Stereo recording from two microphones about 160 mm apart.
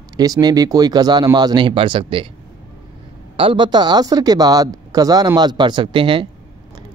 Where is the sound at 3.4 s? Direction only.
30° right (ahead or behind).